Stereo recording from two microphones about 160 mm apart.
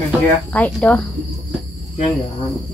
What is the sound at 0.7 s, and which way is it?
Speech, 5° left (ahead or behind).